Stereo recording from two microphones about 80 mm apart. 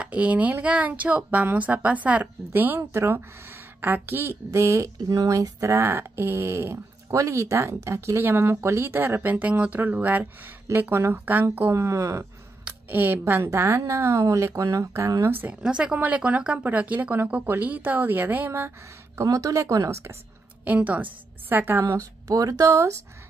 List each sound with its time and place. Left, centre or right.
0.0 s a woman's voice: centre; by 12.3 s right
12.9 s speech: right
13.3 s a woman's voice: right
15.6 s speech: centre
19.1 s speech: right
20.6 s speech: centre
21.9 s speech: right